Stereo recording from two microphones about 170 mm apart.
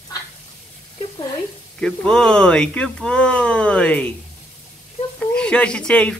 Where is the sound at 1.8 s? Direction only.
5° left (ahead or behind).